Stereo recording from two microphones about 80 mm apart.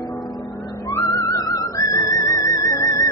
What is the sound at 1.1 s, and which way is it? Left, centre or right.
Music, left.